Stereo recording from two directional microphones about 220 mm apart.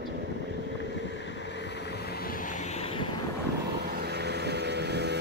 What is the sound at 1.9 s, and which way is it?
Vehicle, 45° left (ahead or behind).